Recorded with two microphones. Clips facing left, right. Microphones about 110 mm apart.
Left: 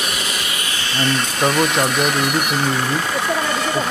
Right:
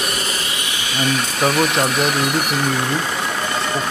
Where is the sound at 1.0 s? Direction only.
Centre (ahead or behind).